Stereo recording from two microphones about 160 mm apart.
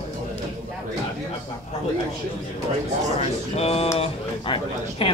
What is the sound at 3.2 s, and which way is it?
A man's voice, 40° left (ahead or behind).